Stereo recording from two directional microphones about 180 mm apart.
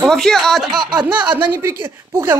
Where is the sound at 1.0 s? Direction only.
10° right (ahead or behind).